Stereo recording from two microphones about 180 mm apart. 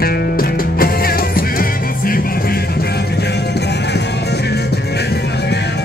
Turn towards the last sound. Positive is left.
turn(degrees=65)  # may be behind; listen again after turning